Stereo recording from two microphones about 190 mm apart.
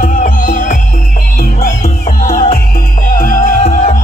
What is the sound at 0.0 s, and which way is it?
Music, 40° left (ahead or behind).